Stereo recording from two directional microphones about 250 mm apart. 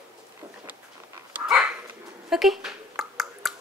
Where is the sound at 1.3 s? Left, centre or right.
Centre.